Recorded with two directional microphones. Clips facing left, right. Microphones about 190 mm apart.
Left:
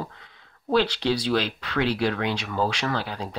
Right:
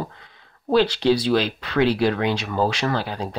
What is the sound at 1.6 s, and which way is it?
Speech, 35° right (ahead or behind).